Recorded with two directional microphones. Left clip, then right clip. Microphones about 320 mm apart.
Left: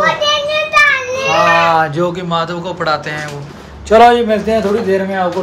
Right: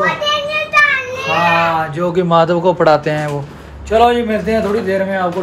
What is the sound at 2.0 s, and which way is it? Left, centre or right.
Speech, centre.